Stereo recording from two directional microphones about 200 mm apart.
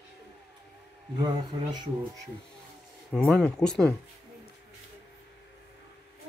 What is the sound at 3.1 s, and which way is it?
Speech, 5° left (ahead or behind).